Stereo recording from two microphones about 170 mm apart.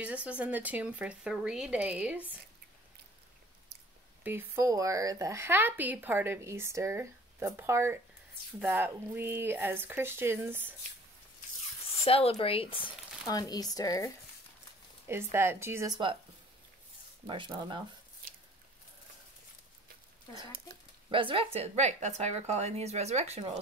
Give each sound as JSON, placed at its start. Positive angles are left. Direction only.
{"t": 0.0, "sound": "speech", "side_deg": -5}
{"t": 4.2, "sound": "speech", "side_deg": -10}
{"t": 12.0, "sound": "speech", "side_deg": 35}
{"t": 15.0, "sound": "speech", "side_deg": -15}
{"t": 17.3, "sound": "speech", "side_deg": -30}
{"t": 21.1, "sound": "speech", "side_deg": -30}